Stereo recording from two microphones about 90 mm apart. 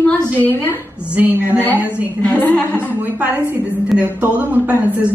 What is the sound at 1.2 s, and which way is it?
Speech, 20° right (ahead or behind).